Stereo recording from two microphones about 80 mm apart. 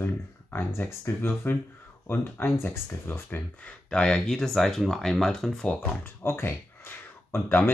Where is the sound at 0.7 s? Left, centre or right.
Left.